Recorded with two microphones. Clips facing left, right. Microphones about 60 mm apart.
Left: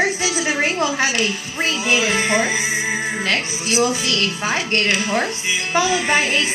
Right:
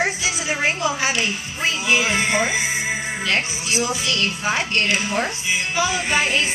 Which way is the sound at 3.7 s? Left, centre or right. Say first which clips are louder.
Left 4 dB; left.